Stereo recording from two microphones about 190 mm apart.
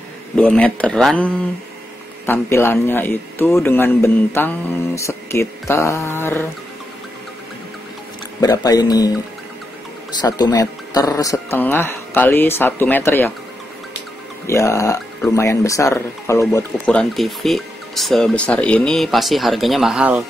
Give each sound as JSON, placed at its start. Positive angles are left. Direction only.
{"t": 0.4, "sound": "a man's voice", "side_deg": 5}
{"t": 8.4, "sound": "speech", "side_deg": 20}
{"t": 10.2, "sound": "a man's voice", "side_deg": 20}
{"t": 14.4, "sound": "a man's voice", "side_deg": 15}